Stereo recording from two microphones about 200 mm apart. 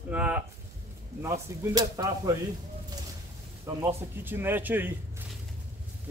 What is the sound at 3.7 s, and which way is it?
Speech, 15° right (ahead or behind).